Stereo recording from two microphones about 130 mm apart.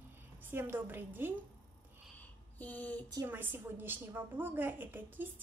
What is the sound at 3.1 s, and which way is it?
A woman's voice, 20° right (ahead or behind).